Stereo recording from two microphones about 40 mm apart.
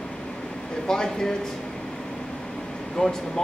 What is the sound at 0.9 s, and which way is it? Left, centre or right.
Speech, centre.